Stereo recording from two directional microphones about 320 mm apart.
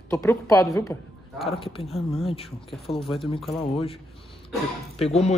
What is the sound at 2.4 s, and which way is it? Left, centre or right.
Speech, centre.